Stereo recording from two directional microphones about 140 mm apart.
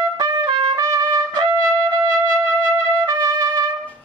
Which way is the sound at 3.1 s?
25° right (ahead or behind).